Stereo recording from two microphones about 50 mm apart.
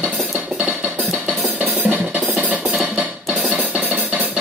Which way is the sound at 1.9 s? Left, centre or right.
Right.